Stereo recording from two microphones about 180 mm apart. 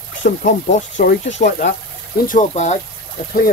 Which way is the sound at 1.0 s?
55° left (ahead or behind).